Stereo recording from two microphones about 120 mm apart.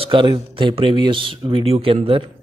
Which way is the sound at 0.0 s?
45° right (ahead or behind).